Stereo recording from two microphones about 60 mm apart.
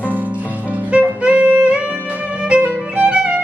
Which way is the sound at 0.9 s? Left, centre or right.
Right.